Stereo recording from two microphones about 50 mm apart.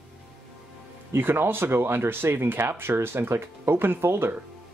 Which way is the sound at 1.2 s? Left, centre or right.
Right.